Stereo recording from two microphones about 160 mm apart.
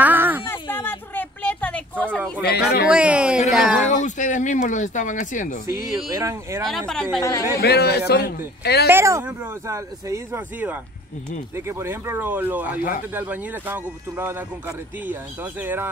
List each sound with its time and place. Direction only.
0.0 s a sound: 10° right (ahead or behind)
0.5 s a sound: 15° left (ahead or behind)
2.4 s a man's voice: 90° left
2.9 s speech: 5° right (ahead or behind)
3.9 s speech: 50° left (ahead or behind)
6.1 s speech: 15° right (ahead or behind)
6.9 s a woman's voice: 5° left (ahead or behind)
7.2 s speech: 20° left (ahead or behind)
7.5 s a man's voice: 90° left
8.8 s speech: 15° right (ahead or behind)